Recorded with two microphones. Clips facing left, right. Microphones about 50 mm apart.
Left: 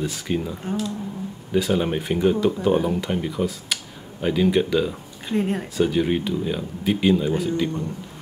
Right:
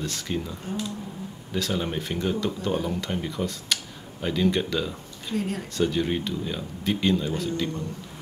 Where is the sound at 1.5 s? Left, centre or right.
Centre.